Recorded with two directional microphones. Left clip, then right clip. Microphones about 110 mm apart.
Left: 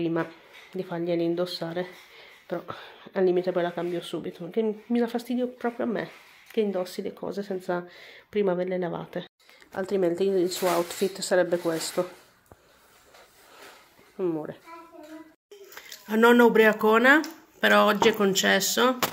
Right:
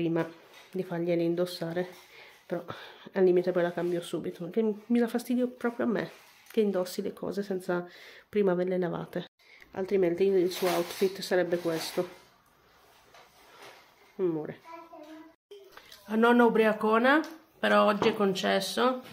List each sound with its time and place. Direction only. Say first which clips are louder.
0.0 s speech: left 2 dB; 15° right (ahead or behind)
9.7 s a woman's voice: left 2 dB; centre (ahead or behind)
14.1 s speech: left 1 dB; 10° right (ahead or behind)
15.7 s speech: left 5 dB; 15° left (ahead or behind)